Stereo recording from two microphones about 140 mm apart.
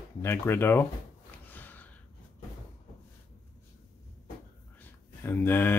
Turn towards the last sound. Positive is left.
turn(degrees=15)  # may be behind; listen again after turning